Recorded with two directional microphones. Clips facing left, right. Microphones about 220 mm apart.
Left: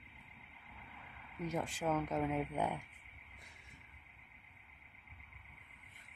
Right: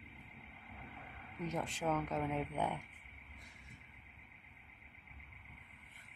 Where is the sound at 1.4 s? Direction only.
10° left (ahead or behind).